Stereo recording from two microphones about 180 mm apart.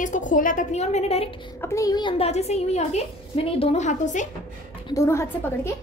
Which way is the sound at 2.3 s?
35° left (ahead or behind).